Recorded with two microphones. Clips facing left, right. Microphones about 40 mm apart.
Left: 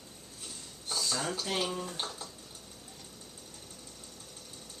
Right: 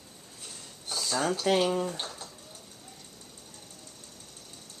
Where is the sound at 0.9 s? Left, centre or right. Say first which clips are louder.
Right 5 dB; right.